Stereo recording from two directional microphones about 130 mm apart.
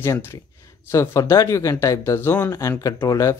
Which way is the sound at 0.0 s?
20° left (ahead or behind).